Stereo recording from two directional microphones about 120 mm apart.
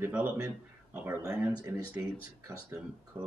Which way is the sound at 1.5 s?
25° right (ahead or behind).